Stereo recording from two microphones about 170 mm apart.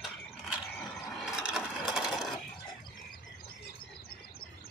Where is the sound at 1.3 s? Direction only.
5° right (ahead or behind).